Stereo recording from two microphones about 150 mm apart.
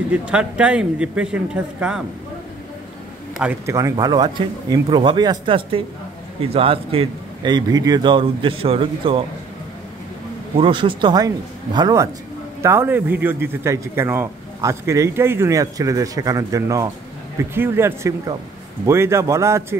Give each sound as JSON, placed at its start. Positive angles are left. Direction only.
{"t": 0.1, "sound": "speech", "side_deg": -10}
{"t": 3.6, "sound": "a man's voice", "side_deg": -20}
{"t": 10.5, "sound": "a man's voice", "side_deg": -35}